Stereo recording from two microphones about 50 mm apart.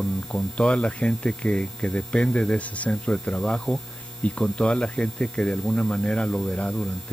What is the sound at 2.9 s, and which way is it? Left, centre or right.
Speech, centre.